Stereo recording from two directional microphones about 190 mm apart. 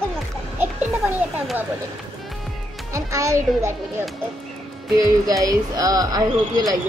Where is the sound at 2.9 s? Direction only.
15° right (ahead or behind).